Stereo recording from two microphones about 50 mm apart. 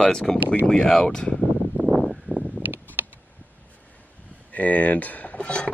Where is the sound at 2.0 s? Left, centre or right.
Centre.